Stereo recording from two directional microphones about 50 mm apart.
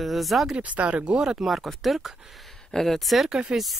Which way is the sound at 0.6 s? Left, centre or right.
Right.